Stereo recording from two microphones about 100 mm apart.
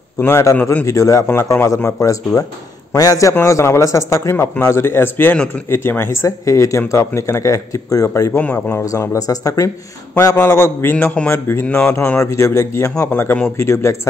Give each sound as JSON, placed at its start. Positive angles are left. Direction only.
{"t": 0.2, "sound": "a man's voice", "side_deg": 25}
{"t": 8.3, "sound": "speech", "side_deg": 15}
{"t": 8.8, "sound": "a man's voice", "side_deg": 30}
{"t": 13.1, "sound": "a man's voice", "side_deg": 20}